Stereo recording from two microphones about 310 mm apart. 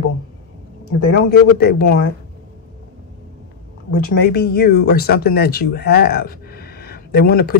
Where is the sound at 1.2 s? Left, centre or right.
Left.